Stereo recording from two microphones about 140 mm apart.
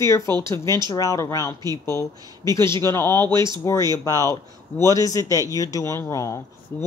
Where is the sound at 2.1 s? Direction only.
30° right (ahead or behind).